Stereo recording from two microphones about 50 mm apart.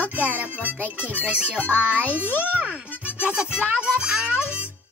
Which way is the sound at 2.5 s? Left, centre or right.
Right.